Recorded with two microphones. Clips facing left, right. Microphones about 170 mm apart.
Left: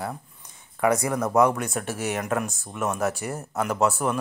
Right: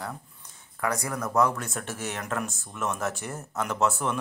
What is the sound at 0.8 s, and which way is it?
A man's voice, 25° left (ahead or behind).